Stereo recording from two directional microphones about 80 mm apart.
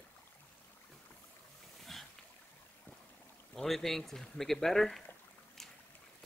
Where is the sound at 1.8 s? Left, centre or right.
Centre.